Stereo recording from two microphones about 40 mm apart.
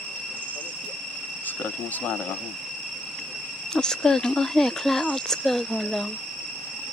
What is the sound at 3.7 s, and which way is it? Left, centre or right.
Speech, centre.